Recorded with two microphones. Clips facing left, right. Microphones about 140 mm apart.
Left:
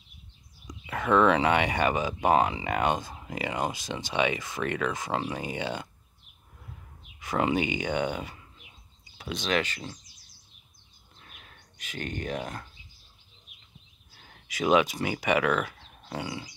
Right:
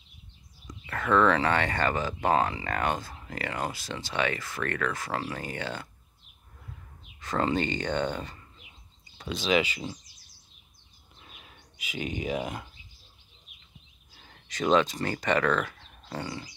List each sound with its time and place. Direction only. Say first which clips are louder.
0.7 s speech: left 1 dB; 15° left (ahead or behind); by 9.9 s 5° right (ahead or behind)
11.1 s a sound: right 1 dB; 5° right (ahead or behind)
14.2 s speech: left 1 dB; 5° left (ahead or behind)